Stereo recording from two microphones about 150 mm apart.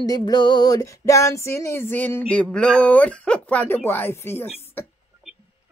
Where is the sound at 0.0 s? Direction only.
25° left (ahead or behind).